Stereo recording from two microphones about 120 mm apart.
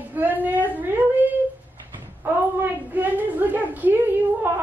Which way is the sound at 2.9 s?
15° right (ahead or behind).